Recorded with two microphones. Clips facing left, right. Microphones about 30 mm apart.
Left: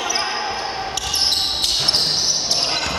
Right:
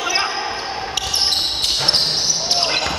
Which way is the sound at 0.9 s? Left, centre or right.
Centre.